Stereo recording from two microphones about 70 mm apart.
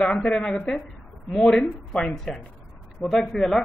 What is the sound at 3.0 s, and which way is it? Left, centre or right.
Speech, left.